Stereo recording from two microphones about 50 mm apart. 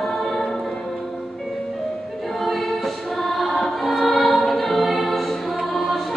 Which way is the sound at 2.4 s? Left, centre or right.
Centre.